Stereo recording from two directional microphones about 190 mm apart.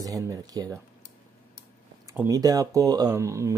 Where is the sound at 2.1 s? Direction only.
15° right (ahead or behind).